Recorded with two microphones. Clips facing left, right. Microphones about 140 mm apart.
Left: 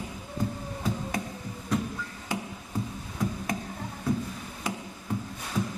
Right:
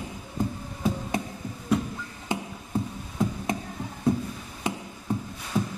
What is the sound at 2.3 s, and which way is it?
Music, 20° right (ahead or behind).